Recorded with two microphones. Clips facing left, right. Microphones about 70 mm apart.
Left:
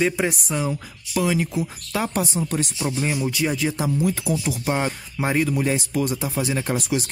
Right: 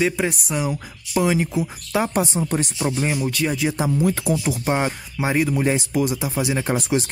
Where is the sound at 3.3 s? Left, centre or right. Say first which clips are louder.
Right 1 dB; centre.